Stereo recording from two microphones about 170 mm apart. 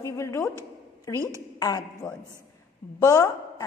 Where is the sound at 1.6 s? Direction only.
20° left (ahead or behind).